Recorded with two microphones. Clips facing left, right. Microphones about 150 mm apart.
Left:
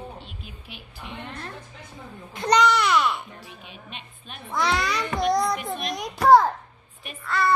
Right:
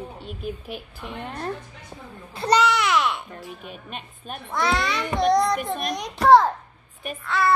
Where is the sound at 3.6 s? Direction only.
45° right (ahead or behind).